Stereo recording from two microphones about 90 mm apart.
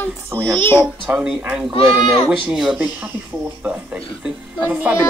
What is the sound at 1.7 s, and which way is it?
Speech, 90° left.